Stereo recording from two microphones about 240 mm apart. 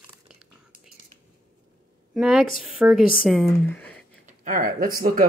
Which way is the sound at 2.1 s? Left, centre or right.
Centre.